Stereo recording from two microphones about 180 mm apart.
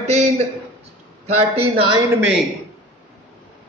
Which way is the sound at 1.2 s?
35° right (ahead or behind).